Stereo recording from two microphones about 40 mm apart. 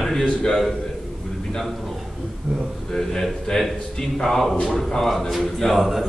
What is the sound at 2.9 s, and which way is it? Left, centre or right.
A man's voice, centre.